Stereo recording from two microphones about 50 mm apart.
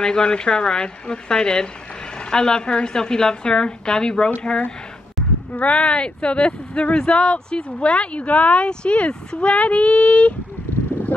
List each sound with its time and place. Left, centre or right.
0.0 s a woman's voice: centre